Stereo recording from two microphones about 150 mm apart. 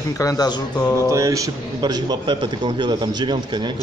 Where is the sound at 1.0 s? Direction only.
20° right (ahead or behind).